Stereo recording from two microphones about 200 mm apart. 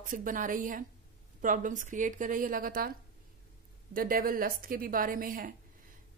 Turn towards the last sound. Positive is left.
turn(degrees=-45)  # may be behind; listen again after turning